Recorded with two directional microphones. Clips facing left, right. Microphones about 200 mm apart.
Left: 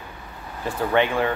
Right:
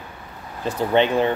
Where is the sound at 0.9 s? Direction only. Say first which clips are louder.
Right 3 dB; 25° right (ahead or behind).